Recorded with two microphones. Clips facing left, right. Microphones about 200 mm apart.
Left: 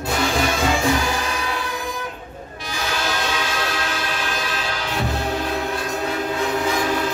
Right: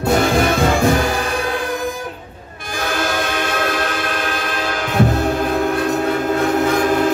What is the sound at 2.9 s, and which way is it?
Train, 50° right (ahead or behind).